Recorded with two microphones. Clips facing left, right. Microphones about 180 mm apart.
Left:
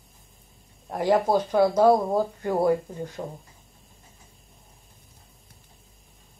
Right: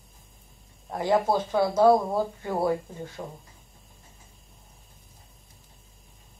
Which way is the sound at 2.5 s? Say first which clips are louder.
Left 4 dB; 15° left (ahead or behind).